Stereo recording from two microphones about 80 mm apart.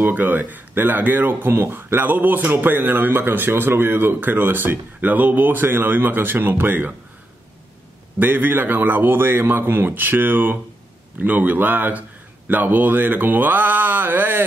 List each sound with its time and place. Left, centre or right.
0.0 s speech: right
8.2 s speech: right